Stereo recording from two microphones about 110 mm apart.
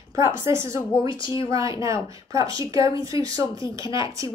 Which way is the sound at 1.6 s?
30° right (ahead or behind).